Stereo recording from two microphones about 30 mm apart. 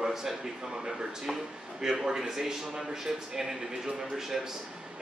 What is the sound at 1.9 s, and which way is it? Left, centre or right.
Speech, right.